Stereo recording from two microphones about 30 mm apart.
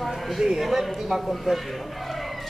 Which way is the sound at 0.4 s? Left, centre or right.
Centre.